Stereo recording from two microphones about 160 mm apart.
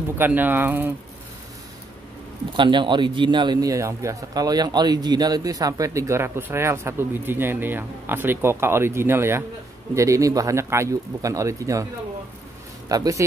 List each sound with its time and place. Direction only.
0.2 s speech: 10° right (ahead or behind)
2.5 s a man's voice: 30° right (ahead or behind)